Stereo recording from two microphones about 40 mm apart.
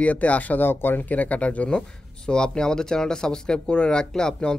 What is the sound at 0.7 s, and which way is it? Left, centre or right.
Speech, left.